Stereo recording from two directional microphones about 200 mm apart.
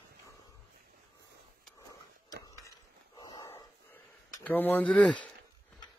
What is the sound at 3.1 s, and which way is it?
Dog, 20° left (ahead or behind).